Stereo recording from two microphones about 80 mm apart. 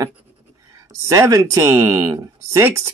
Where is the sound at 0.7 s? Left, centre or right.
Right.